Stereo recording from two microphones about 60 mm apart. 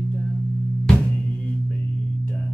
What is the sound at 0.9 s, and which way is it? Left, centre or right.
Music, centre.